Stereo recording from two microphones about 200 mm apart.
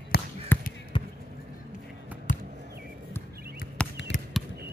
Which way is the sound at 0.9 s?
25° left (ahead or behind).